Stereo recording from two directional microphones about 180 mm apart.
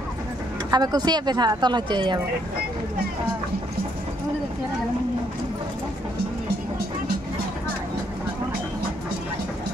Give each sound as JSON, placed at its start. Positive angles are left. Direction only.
{"t": 0.7, "sound": "speech", "side_deg": -20}